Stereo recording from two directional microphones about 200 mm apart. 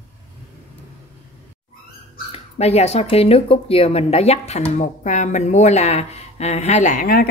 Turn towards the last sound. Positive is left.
turn(degrees=45)  # may be behind; listen again after turning